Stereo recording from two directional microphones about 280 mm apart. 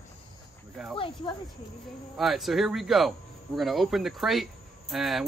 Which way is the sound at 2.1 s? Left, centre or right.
Centre.